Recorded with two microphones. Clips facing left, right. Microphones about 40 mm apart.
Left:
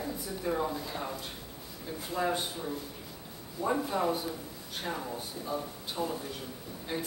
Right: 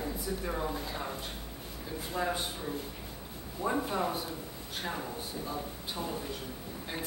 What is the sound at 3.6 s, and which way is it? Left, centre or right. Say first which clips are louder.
Speech: left 2 dB; centre.